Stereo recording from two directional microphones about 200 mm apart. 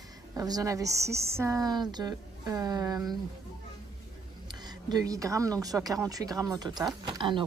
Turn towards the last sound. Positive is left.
turn(degrees=-25)  # may be behind; listen again after turning